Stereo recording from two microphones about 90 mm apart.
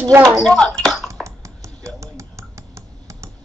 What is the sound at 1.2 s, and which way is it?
Computer keyboard, 35° right (ahead or behind).